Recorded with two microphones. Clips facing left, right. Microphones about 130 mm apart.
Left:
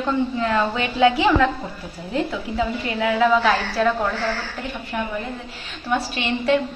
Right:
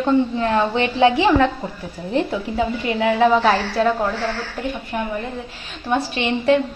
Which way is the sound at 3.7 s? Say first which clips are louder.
Right 2 dB; 20° right (ahead or behind).